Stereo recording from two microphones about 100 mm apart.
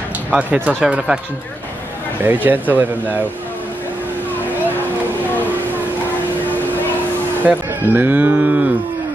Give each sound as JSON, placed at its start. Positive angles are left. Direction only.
{"t": 0.3, "sound": "moo", "side_deg": -15}
{"t": 2.2, "sound": "moo", "side_deg": -20}
{"t": 7.4, "sound": "moo", "side_deg": -20}